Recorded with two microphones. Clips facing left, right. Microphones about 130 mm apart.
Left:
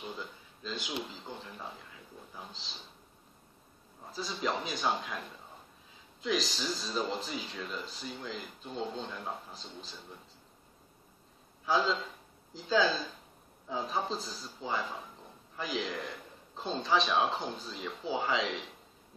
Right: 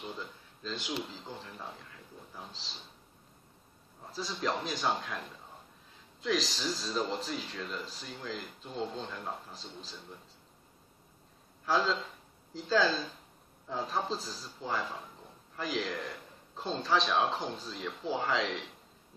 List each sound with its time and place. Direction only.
0.0 s a sound: 5° left (ahead or behind)
1.1 s speech: centre (ahead or behind)
4.1 s speech: centre (ahead or behind)
6.2 s speech: centre (ahead or behind)
11.6 s a man's voice: centre (ahead or behind)